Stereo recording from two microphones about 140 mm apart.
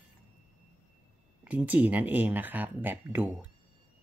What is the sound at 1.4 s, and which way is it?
Speech, 10° right (ahead or behind).